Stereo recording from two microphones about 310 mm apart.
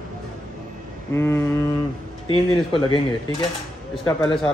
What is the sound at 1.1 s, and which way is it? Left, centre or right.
Speech, centre.